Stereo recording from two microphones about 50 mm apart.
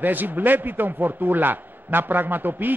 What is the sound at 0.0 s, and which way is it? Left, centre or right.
A man's voice, right.